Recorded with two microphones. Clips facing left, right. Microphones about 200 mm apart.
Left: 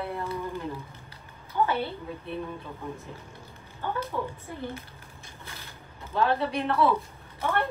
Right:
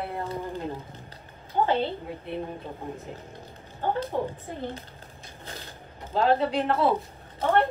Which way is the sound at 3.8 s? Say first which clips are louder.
Right 4 dB; 40° right (ahead or behind).